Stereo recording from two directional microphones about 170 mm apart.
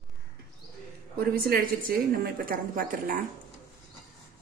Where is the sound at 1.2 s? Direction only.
60° right (ahead or behind).